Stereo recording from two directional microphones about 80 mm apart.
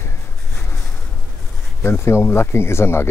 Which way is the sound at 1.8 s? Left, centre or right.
Left.